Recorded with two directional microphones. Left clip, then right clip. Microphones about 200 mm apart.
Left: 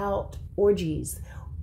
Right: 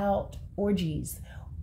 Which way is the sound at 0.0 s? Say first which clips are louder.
Even; 15° left (ahead or behind).